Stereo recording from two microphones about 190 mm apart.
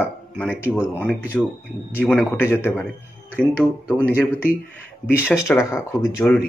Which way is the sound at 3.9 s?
10° left (ahead or behind).